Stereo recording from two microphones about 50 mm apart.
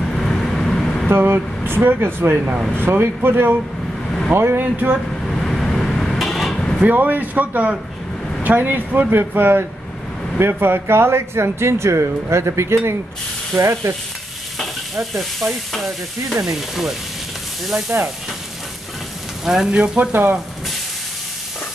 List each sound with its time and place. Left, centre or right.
0.0 s vehicle: centre
1.0 s speech: right
4.6 s a man's voice: right
5.2 s a sound: centre
6.5 s a sound: centre
6.8 s a man's voice: right
13.6 s stir: right
15.0 s stir: centre
16.4 s frying: centre
17.9 s speech: right
19.4 s frying: centre
20.1 s speech: right